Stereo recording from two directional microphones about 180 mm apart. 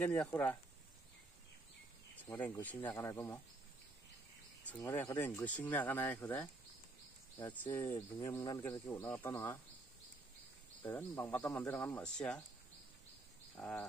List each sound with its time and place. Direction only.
0.0 s speech: 5° left (ahead or behind)
2.2 s speech: 10° left (ahead or behind)
4.6 s speech: 10° left (ahead or behind)
7.3 s speech: 25° left (ahead or behind)
8.3 s speech: 15° left (ahead or behind)
10.8 s speech: 10° left (ahead or behind)